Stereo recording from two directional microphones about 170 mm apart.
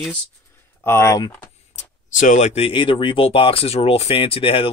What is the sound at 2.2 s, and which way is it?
Speech, 45° left (ahead or behind).